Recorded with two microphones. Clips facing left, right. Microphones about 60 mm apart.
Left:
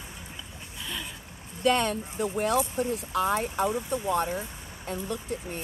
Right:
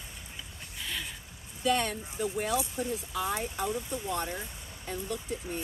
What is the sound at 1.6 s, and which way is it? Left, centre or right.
Speech, left.